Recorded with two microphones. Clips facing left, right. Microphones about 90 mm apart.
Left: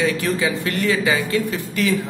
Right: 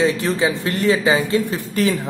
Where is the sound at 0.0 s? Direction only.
25° right (ahead or behind).